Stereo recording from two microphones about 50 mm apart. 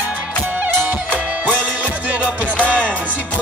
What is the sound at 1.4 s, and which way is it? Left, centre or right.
Music, right.